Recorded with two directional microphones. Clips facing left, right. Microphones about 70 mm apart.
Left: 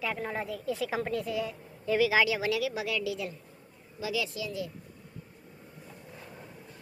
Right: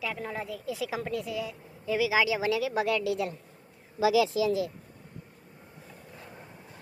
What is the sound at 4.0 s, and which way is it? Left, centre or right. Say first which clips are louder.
Speech: right 10 dB; right.